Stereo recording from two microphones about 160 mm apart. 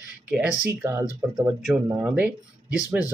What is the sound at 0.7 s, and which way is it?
Speech, 15° right (ahead or behind).